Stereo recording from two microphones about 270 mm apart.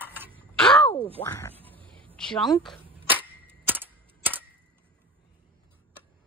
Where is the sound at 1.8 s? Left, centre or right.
Centre.